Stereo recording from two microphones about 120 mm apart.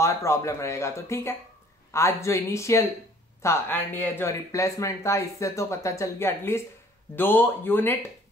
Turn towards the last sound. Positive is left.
turn(degrees=15)  # may be behind; listen again after turning